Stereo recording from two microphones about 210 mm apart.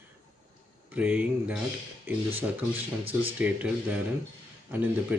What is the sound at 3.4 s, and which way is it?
Speech, 5° right (ahead or behind).